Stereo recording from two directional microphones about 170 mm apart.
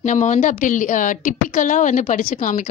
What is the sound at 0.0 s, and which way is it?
A woman's voice, 45° left (ahead or behind).